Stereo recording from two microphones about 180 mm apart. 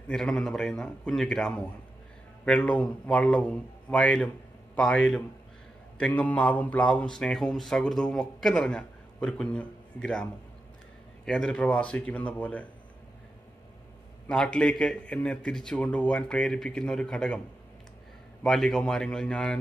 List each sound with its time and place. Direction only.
0.1 s a man's voice: 5° left (ahead or behind)
5.9 s a man's voice: 5° left (ahead or behind)
14.2 s a man's voice: 5° left (ahead or behind)
18.4 s a man's voice: 5° left (ahead or behind)